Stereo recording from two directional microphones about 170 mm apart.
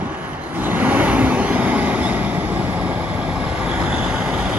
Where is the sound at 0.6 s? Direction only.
10° right (ahead or behind).